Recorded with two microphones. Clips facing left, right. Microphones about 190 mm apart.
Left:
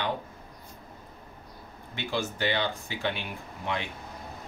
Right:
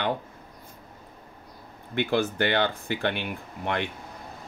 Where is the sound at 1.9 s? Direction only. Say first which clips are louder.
Right 7 dB; 55° right (ahead or behind).